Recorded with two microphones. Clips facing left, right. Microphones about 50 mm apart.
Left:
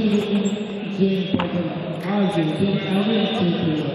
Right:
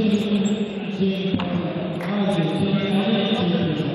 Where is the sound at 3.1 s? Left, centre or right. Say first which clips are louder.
Even; right.